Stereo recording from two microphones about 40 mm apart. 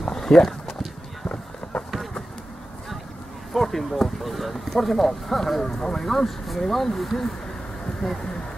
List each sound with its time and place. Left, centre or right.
0.0 s a sound: centre
1.3 s run: left
3.5 s speech: centre